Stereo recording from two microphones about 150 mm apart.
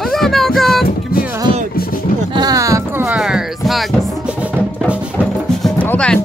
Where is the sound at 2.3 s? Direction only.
25° right (ahead or behind).